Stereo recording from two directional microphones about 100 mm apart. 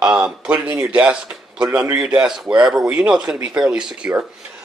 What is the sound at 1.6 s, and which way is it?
Speech, 25° right (ahead or behind).